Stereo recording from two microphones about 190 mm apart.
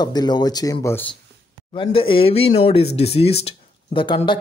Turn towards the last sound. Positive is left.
turn(degrees=25)  # may be behind; listen again after turning